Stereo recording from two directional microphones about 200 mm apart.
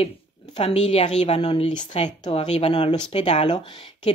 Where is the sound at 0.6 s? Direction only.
30° left (ahead or behind).